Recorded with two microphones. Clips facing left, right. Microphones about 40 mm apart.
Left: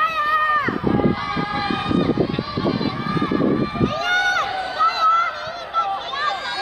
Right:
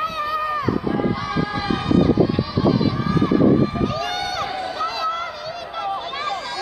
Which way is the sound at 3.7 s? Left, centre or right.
Left.